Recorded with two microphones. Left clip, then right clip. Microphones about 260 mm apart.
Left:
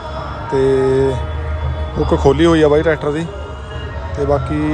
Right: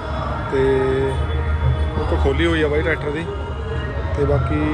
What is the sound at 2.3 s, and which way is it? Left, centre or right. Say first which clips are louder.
Speech: left 8 dB; centre.